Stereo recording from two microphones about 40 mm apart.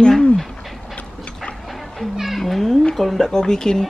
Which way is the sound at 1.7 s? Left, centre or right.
Centre.